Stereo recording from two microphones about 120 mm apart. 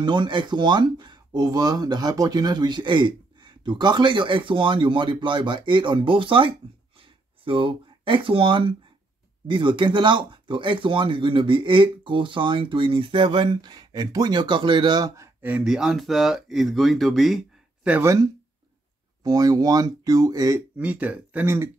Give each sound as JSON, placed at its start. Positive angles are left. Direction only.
{"t": 0.0, "sound": "speech", "side_deg": -40}
{"t": 15.4, "sound": "speech", "side_deg": -10}
{"t": 18.0, "sound": "speech", "side_deg": -25}
{"t": 20.7, "sound": "speech", "side_deg": -10}